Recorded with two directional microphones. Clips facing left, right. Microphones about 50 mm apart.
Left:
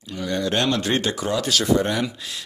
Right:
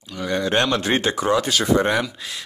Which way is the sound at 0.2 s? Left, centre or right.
Right.